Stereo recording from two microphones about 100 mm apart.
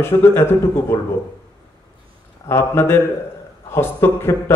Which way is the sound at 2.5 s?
25° left (ahead or behind).